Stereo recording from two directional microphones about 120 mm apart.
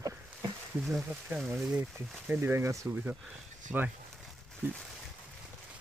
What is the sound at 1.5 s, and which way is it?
Speech, 10° right (ahead or behind).